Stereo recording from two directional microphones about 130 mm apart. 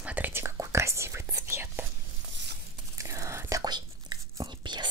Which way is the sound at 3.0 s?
25° right (ahead or behind).